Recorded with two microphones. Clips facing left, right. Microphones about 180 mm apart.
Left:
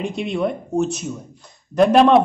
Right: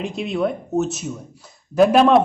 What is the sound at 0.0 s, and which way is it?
A man's voice, centre (ahead or behind).